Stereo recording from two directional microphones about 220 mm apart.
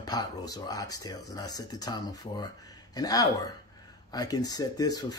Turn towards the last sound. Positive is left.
turn(degrees=15)  # may be behind; listen again after turning